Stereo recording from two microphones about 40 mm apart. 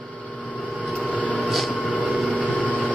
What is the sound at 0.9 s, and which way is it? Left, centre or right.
Printer, left.